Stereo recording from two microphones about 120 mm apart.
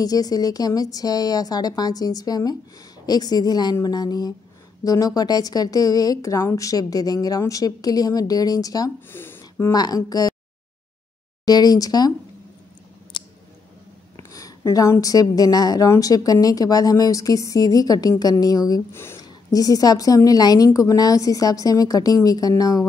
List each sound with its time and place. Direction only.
0.0 s a woman's voice: 30° left (ahead or behind)
9.1 s a sound: 20° left (ahead or behind)
9.7 s a woman's voice: 30° left (ahead or behind)
11.4 s a woman's voice: 35° left (ahead or behind)
13.1 s a sound: 40° left (ahead or behind)
14.1 s a woman's voice: 30° left (ahead or behind)
19.2 s a woman's voice: 30° left (ahead or behind)